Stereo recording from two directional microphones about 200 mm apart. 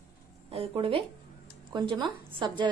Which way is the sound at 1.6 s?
25° right (ahead or behind).